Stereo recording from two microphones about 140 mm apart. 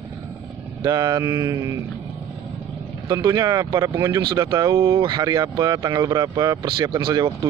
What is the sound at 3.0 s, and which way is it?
Speech, 25° right (ahead or behind).